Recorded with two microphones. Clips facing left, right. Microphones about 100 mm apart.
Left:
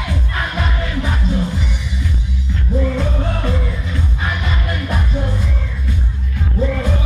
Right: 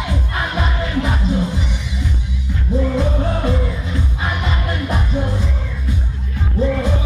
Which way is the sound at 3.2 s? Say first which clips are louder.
Right 2 dB; 15° right (ahead or behind).